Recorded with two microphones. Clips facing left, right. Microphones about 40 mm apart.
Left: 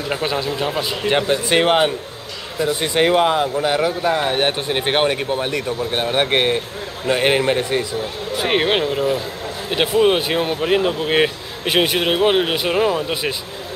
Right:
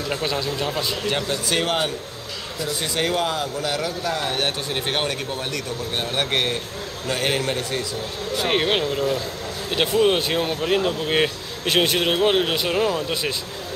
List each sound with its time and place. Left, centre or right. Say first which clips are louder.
0.1 s speech: left 4 dB; centre